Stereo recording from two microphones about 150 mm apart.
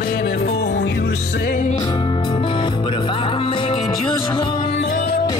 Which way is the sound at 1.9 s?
30° left (ahead or behind).